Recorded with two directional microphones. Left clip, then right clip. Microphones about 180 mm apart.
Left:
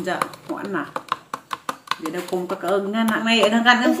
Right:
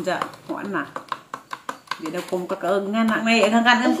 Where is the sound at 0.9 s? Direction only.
25° left (ahead or behind).